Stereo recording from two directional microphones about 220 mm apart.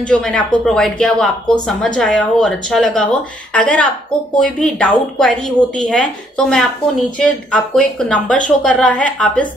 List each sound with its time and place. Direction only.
0.1 s speech: 5° left (ahead or behind)